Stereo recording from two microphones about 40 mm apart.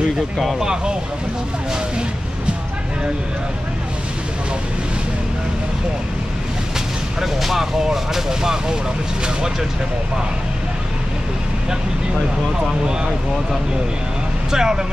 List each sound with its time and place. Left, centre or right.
0.6 s speech: centre
7.2 s speech: centre
14.5 s speech: centre